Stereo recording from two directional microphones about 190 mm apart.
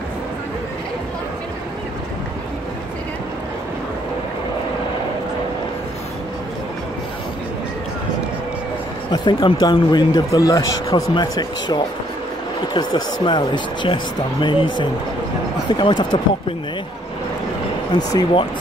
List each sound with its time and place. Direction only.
9.1 s speech: 20° left (ahead or behind)
12.7 s speech: 25° left (ahead or behind)
17.9 s speech: 20° left (ahead or behind)